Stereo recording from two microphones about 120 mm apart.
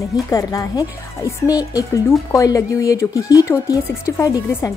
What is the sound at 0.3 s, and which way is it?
Speech, 30° left (ahead or behind).